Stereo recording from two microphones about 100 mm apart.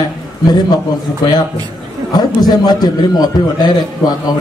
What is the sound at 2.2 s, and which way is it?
A man's voice, 45° left (ahead or behind).